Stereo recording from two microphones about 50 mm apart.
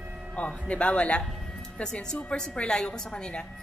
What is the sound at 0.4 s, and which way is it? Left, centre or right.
Speech, left.